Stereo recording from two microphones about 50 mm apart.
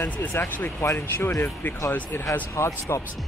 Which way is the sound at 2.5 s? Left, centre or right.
Left.